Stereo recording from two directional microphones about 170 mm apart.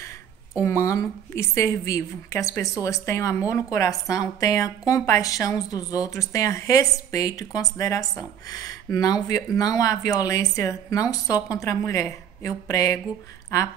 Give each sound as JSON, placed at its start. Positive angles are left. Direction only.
{"t": 0.6, "sound": "a woman's voice", "side_deg": 15}